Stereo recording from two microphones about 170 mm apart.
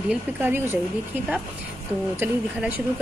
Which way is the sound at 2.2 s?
10° right (ahead or behind).